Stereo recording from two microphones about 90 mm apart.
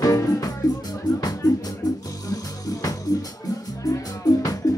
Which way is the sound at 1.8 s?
45° left (ahead or behind).